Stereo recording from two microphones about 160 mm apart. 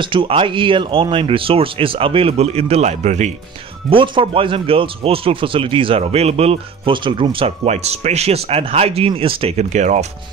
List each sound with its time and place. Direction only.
0.0 s speech: 30° right (ahead or behind)
3.9 s speech: 30° right (ahead or behind)